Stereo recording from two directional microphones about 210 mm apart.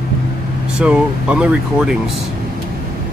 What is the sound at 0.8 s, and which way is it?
Speech, 5° right (ahead or behind).